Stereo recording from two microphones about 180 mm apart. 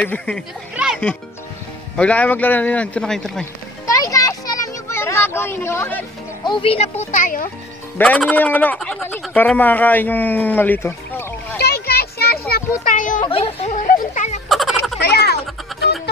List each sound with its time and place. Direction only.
0.0 s speech: 10° left (ahead or behind)
0.7 s music: 5° right (ahead or behind)
2.0 s speech: 5° left (ahead or behind)
3.8 s children playing: 20° left (ahead or behind)
6.4 s speech: 30° left (ahead or behind)
7.1 s a child's voice: 45° left (ahead or behind)
8.0 s speech: 5° left (ahead or behind)
11.6 s a sound: 60° left (ahead or behind)
13.2 s a sound: 30° left (ahead or behind)
14.5 s a sound: centre (ahead or behind)
15.0 s a sound: 65° left (ahead or behind)
15.7 s music: centre (ahead or behind)